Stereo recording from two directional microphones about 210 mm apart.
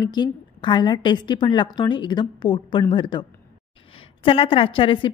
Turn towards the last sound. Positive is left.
turn(degrees=25)  # may be behind; listen again after turning